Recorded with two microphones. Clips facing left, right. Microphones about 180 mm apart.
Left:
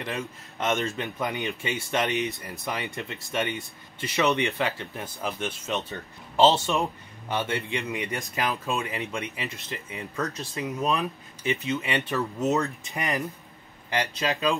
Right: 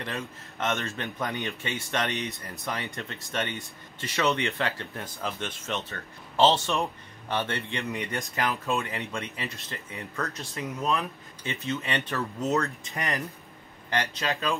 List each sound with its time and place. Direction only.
0.0 s speech: 15° left (ahead or behind)